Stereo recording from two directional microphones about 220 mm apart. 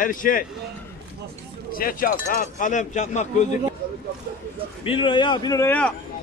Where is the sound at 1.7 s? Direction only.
40° left (ahead or behind).